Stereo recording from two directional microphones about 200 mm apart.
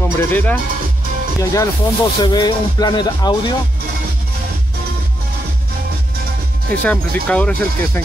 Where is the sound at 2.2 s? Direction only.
20° left (ahead or behind).